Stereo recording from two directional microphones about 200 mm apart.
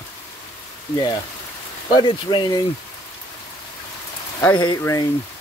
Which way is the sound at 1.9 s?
20° left (ahead or behind).